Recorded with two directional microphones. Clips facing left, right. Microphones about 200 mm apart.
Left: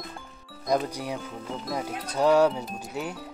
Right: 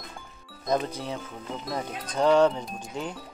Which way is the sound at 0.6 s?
10° left (ahead or behind).